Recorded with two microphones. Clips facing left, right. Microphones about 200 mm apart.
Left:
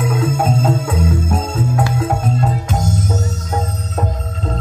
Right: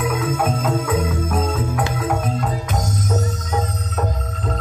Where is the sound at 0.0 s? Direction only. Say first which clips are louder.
Left 3 dB; 25° left (ahead or behind).